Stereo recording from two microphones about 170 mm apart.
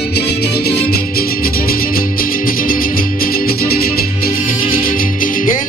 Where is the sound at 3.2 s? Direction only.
60° left (ahead or behind).